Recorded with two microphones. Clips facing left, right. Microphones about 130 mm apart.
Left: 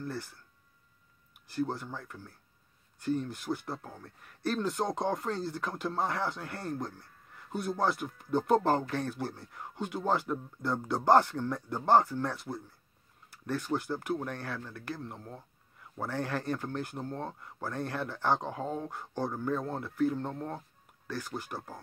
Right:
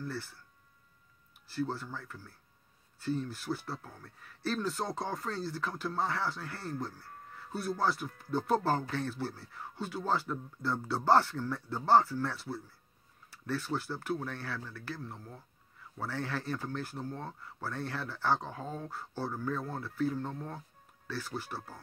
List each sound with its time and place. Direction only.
0.0 s speech: 20° left (ahead or behind)
1.5 s speech: 20° left (ahead or behind)
6.5 s speech: 55° left (ahead or behind)
7.8 s speech: 20° left (ahead or behind)